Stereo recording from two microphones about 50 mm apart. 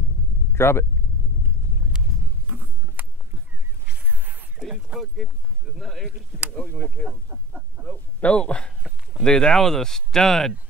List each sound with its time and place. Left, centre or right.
0.6 s speech: left
2.4 s a sound: right
4.9 s speech: centre
6.6 s speech: left
7.8 s speech: right
8.2 s speech: left